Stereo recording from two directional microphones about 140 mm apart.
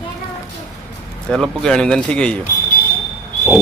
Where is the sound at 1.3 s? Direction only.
5° left (ahead or behind).